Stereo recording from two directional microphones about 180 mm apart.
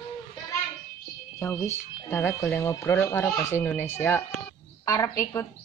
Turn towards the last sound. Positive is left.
turn(degrees=15)  # may be behind; listen again after turning